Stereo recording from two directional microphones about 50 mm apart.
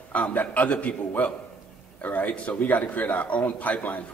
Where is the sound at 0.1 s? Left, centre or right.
Left.